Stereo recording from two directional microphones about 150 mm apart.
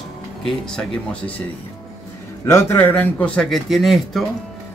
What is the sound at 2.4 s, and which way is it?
A man's voice, 15° left (ahead or behind).